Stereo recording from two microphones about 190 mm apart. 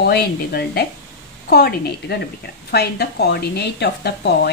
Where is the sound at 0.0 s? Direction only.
60° left (ahead or behind).